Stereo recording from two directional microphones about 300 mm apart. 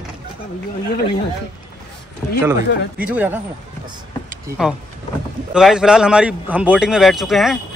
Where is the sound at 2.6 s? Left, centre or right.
Left.